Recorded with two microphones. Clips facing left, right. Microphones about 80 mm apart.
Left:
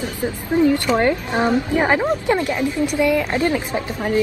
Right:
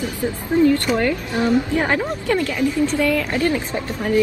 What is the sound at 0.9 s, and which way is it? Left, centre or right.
A woman's voice, left.